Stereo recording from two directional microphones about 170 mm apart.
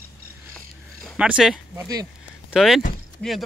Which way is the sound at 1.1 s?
5° right (ahead or behind).